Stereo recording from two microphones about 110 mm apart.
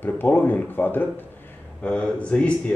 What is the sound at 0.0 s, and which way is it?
Speech, 20° left (ahead or behind).